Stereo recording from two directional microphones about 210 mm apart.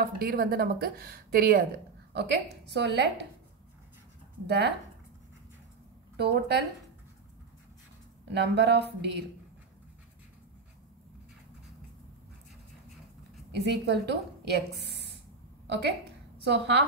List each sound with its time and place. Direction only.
0.0 s a woman's voice: 45° right (ahead or behind)
4.5 s a woman's voice: 55° right (ahead or behind)
6.1 s a woman's voice: 55° right (ahead or behind)
8.3 s a woman's voice: 55° right (ahead or behind)
13.5 s a woman's voice: 55° right (ahead or behind)
16.4 s a woman's voice: 55° right (ahead or behind)